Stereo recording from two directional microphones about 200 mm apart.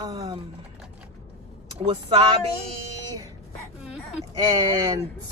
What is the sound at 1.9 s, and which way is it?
Speech, 30° right (ahead or behind).